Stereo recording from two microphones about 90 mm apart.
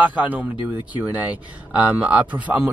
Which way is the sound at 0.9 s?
15° right (ahead or behind).